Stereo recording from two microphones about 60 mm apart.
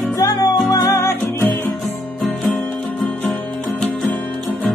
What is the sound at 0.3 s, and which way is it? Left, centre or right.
Music, left.